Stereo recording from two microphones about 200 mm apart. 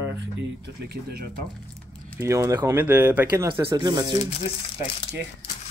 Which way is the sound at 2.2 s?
15° right (ahead or behind).